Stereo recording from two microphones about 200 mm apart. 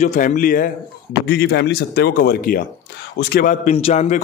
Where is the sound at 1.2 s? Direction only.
60° left (ahead or behind); by 4.2 s 35° left (ahead or behind).